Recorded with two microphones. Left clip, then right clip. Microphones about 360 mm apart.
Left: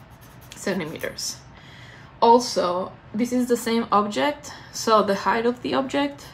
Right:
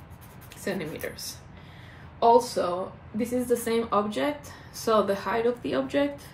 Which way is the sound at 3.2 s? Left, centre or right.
Left.